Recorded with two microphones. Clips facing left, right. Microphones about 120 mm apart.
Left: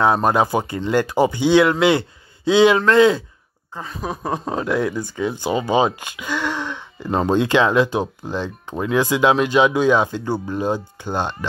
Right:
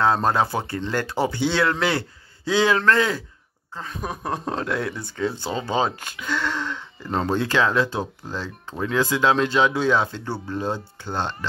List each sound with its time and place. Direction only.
0.0 s speech: 15° left (ahead or behind)
3.7 s speech: 5° left (ahead or behind)